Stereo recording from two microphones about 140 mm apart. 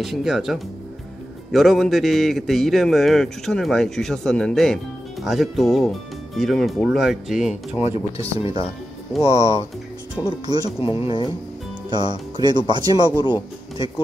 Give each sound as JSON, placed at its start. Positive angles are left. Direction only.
{"t": 0.0, "sound": "a man's voice", "side_deg": 0}
{"t": 7.8, "sound": "speech", "side_deg": 45}
{"t": 10.2, "sound": "speech", "side_deg": 20}
{"t": 10.8, "sound": "speech", "side_deg": 40}
{"t": 11.9, "sound": "speech", "side_deg": -35}
{"t": 13.2, "sound": "speech", "side_deg": 35}